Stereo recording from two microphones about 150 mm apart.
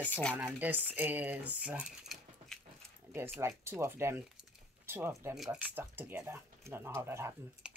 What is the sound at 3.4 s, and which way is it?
Speech, 15° right (ahead or behind).